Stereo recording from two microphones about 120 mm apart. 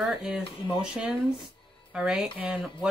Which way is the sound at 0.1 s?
5° right (ahead or behind).